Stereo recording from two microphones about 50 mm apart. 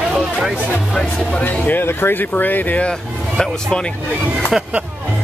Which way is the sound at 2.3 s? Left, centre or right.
Left.